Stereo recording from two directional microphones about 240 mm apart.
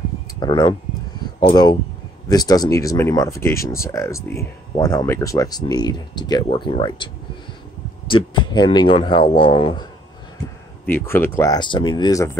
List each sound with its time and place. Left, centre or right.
0.4 s speech: centre
8.1 s speech: centre
10.9 s speech: centre